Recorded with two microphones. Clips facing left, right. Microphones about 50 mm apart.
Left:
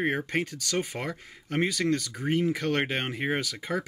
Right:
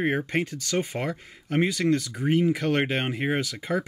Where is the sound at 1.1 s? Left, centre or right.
Centre.